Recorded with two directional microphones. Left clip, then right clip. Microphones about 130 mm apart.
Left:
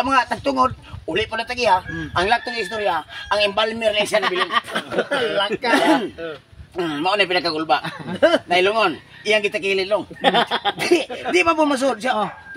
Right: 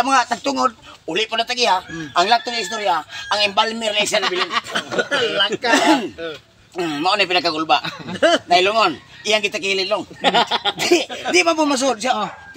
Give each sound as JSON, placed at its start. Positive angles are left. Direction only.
{"t": 0.0, "sound": "a man's voice", "side_deg": -20}
{"t": 4.2, "sound": "speech", "side_deg": 40}
{"t": 5.1, "sound": "speech", "side_deg": 15}
{"t": 6.8, "sound": "a man's voice", "side_deg": -15}
{"t": 8.1, "sound": "speech", "side_deg": 15}
{"t": 8.5, "sound": "a man's voice", "side_deg": -20}
{"t": 10.2, "sound": "speech", "side_deg": 40}
{"t": 10.8, "sound": "speech", "side_deg": -20}